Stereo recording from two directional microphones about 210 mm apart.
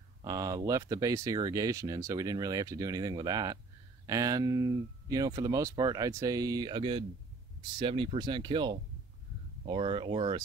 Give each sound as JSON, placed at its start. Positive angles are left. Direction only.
{"t": 0.2, "sound": "speech", "side_deg": -15}